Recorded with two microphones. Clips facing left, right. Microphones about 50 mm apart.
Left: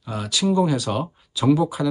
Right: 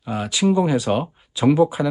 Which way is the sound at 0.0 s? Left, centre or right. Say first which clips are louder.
Right 3 dB; right.